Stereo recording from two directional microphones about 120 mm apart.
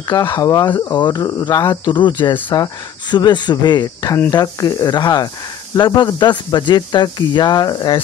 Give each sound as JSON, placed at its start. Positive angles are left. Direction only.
{"t": 0.3, "sound": "speech", "side_deg": 30}